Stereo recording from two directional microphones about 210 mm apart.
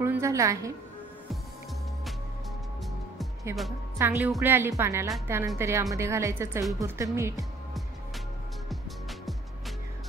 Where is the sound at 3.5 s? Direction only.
10° right (ahead or behind).